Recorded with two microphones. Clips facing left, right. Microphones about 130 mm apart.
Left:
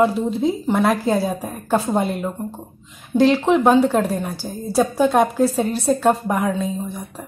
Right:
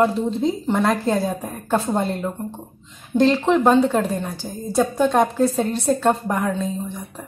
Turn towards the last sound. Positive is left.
turn(degrees=15)  # may be behind; listen again after turning